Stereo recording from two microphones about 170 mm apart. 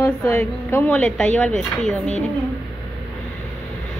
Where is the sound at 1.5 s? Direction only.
45° left (ahead or behind).